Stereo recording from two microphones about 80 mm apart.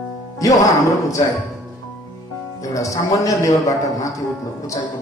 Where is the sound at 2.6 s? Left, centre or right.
Left.